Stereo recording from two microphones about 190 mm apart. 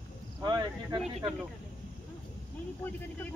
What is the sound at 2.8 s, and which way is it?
Speech, 10° left (ahead or behind).